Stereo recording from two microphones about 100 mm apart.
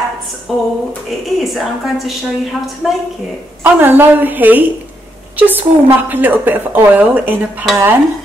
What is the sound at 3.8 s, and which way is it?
A woman's voice, 20° right (ahead or behind).